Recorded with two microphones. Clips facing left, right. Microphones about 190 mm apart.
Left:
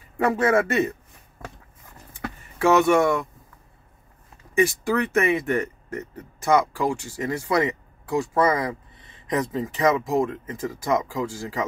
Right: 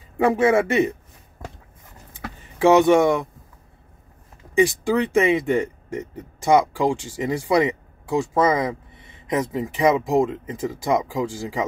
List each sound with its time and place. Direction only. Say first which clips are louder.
0.2 s speech: right 3 dB; 15° right (ahead or behind)
2.6 s speech: right 3 dB; 20° right (ahead or behind)
4.6 s speech: right 3 dB; 15° right (ahead or behind)